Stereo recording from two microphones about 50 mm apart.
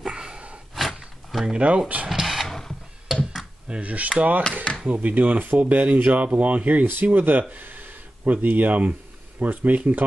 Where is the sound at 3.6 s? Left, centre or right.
Centre.